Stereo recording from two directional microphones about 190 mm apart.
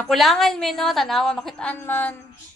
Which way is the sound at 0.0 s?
Centre (ahead or behind).